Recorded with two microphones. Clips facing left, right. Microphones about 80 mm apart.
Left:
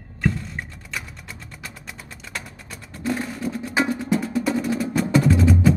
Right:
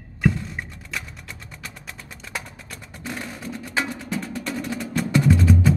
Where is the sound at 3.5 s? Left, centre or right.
Centre.